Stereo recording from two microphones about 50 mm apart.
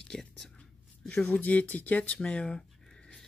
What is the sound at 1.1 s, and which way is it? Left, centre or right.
Speech, left.